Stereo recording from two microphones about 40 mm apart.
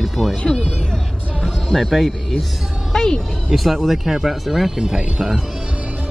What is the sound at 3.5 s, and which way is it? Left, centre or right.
Speech, centre.